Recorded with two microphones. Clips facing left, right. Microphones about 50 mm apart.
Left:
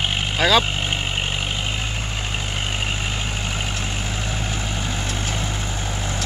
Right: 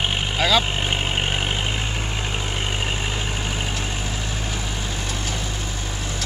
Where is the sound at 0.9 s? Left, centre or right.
Right.